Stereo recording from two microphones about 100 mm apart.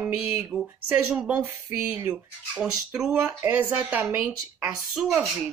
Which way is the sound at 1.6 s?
25° right (ahead or behind).